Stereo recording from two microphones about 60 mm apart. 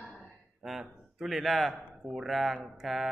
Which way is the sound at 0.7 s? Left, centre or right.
Centre.